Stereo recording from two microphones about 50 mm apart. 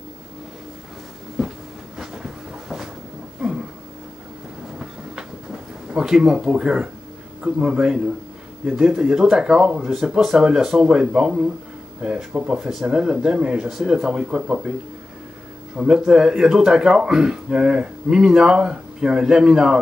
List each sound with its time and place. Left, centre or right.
1.4 s train: centre
2.0 s a sound: centre
5.9 s speech: centre
14.0 s speech: centre
15.8 s speech: centre